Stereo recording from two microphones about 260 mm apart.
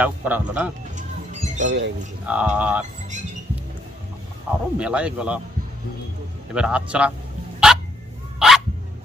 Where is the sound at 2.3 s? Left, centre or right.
Centre.